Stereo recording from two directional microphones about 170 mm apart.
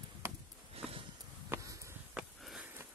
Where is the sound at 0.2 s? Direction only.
15° right (ahead or behind).